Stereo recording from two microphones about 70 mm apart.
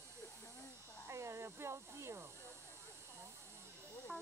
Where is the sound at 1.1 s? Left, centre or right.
Right.